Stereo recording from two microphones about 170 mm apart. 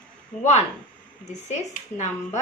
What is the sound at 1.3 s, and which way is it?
Speech, 45° left (ahead or behind).